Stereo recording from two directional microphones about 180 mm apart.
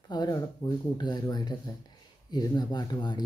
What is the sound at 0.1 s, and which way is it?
Speech, 25° left (ahead or behind).